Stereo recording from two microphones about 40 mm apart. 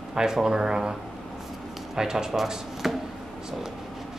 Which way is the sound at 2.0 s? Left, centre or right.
Centre.